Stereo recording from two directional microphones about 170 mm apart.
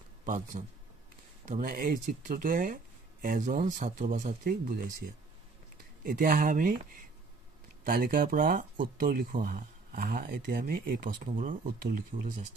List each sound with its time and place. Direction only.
0.2 s a man's voice: 50° right (ahead or behind)